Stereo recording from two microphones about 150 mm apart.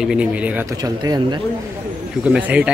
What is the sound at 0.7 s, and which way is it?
Speech, 25° right (ahead or behind).